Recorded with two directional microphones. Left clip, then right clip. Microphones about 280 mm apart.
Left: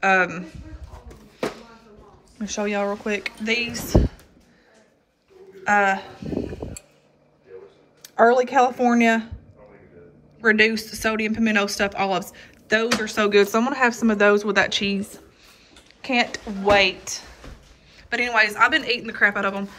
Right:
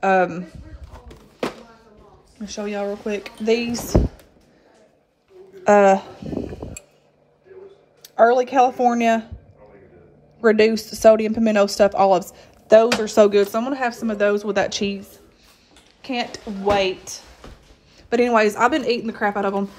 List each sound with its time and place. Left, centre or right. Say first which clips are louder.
0.0 s speech: right 1 dB; centre
2.3 s speech: left 2 dB; centre
5.6 s speech: right 5 dB; right
6.6 s a sound: left 1 dB; centre
8.0 s speech: right 1 dB; centre
10.4 s speech: right 2 dB; centre
16.0 s speech: left 4 dB; centre